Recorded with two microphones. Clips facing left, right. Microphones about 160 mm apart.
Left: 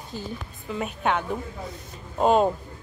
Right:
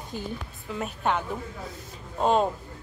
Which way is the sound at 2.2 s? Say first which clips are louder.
Left 3 dB; 5° left (ahead or behind).